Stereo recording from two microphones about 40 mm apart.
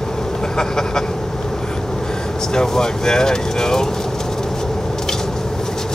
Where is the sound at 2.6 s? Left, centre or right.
Centre.